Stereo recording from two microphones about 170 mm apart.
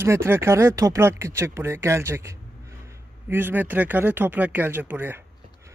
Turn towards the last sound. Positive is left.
turn(degrees=-10)  # may be behind; listen again after turning